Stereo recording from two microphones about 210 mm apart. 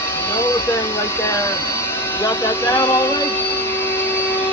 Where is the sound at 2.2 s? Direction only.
15° left (ahead or behind).